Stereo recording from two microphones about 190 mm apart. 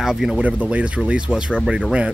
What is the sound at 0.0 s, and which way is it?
Speech, centre (ahead or behind).